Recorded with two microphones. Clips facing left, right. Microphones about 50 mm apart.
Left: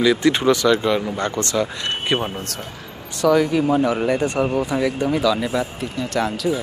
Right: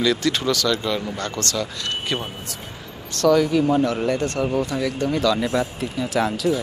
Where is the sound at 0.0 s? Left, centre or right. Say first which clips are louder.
Left 4 dB; centre.